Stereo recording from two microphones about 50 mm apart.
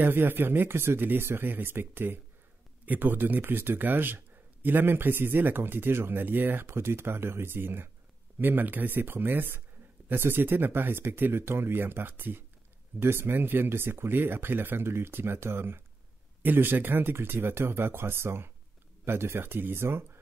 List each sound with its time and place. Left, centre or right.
0.0 s speech: right
14.9 s speech: right